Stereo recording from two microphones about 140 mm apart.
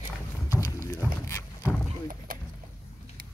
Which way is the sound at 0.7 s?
25° left (ahead or behind).